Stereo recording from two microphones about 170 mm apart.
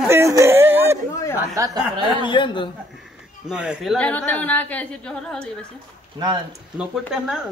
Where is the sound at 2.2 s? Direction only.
30° left (ahead or behind).